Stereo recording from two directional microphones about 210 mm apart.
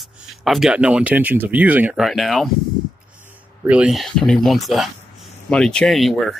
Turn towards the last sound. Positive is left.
turn(degrees=0)  # may be behind; listen again after turning